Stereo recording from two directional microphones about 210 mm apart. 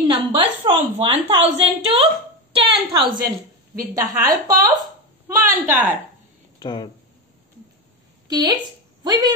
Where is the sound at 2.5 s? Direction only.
20° right (ahead or behind).